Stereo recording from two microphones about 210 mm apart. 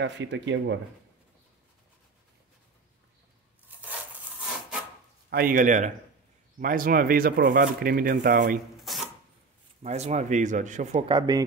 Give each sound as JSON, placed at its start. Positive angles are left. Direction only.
{"t": 0.0, "sound": "speech", "side_deg": -55}
{"t": 4.4, "sound": "wood", "side_deg": -5}
{"t": 5.3, "sound": "speech", "side_deg": -45}
{"t": 8.9, "sound": "a sound", "side_deg": 0}
{"t": 9.8, "sound": "speech", "side_deg": -30}